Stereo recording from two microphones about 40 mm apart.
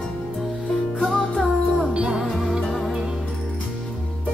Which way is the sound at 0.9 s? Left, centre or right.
Left.